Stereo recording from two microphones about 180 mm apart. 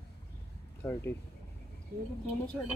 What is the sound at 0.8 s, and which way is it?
Speech, 15° left (ahead or behind).